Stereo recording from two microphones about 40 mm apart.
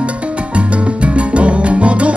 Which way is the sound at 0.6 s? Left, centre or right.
Right.